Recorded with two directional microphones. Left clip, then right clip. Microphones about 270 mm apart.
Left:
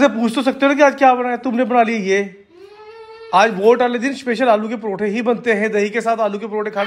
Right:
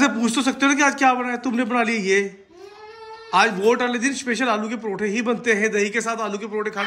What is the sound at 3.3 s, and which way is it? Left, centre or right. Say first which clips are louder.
A man's voice: left 5 dB; centre.